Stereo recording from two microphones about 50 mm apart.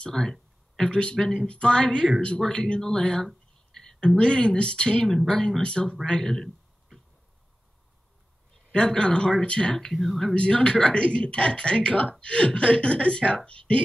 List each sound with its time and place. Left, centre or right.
0.1 s a sound: centre
0.8 s speech: centre
1.2 s speech: centre
3.7 s a sound: centre
4.2 s speech: centre
5.6 s speech: centre
6.0 s a sound: centre
8.7 s speech: centre
9.8 s speech: centre
10.3 s speech: left